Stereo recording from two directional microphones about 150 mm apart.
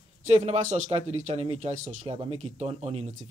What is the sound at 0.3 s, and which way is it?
Speech, 45° right (ahead or behind).